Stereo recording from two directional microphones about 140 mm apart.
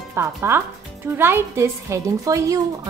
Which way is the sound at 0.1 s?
20° right (ahead or behind).